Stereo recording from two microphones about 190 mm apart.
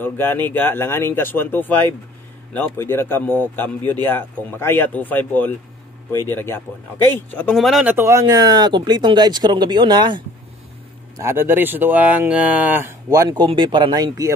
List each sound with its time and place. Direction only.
0.0 s speech: 10° left (ahead or behind); by 10.2 s 25° right (ahead or behind)
11.1 s speech: 10° right (ahead or behind)